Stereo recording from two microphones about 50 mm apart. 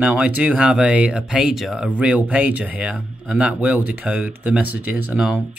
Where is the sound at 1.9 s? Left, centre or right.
Right.